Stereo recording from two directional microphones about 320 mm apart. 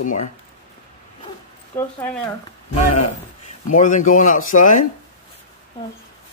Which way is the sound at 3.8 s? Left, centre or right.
Left.